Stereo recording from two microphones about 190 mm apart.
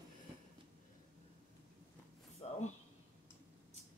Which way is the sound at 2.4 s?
30° left (ahead or behind).